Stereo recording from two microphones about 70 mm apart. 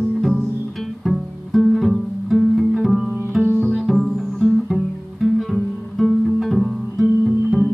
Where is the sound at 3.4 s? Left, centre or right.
Right.